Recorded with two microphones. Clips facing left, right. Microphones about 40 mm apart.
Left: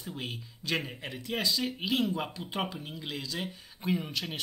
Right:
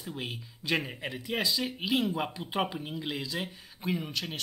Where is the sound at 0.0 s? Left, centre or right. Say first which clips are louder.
Right 1 dB; centre.